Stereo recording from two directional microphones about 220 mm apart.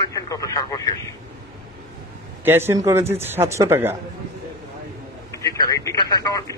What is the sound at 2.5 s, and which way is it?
A man's voice, 10° right (ahead or behind).